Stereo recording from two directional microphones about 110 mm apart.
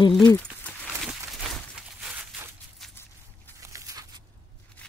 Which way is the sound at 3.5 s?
30° right (ahead or behind).